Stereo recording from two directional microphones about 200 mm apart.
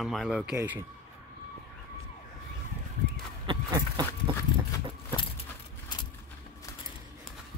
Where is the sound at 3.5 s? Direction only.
20° right (ahead or behind).